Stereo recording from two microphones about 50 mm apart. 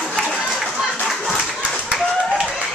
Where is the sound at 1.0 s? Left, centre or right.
Centre.